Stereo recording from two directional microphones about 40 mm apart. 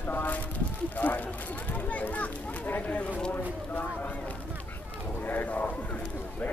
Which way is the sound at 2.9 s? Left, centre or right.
Left.